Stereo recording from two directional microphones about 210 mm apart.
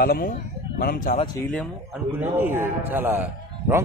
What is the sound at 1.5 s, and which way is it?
A man's voice, centre (ahead or behind).